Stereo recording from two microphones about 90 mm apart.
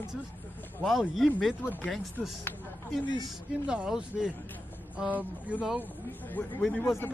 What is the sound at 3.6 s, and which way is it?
Speech, 10° right (ahead or behind).